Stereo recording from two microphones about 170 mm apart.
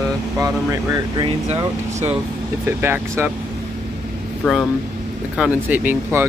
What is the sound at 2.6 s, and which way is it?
Speech, 15° right (ahead or behind).